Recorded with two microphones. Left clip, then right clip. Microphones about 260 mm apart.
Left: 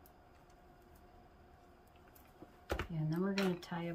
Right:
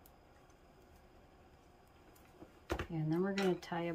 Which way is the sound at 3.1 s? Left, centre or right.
Centre.